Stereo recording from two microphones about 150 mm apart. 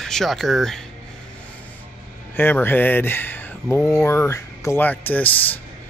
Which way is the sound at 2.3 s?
15° left (ahead or behind).